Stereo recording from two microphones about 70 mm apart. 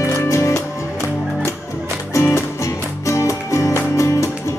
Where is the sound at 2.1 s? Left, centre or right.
Left.